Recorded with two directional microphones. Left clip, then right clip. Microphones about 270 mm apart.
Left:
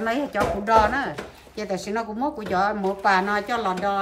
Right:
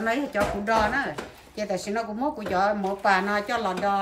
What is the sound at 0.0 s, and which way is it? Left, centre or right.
A woman's voice, centre.